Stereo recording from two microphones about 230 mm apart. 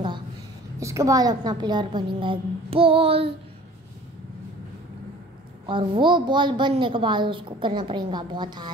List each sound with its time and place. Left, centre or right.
0.7 s a woman's voice: centre
5.7 s a woman's voice: right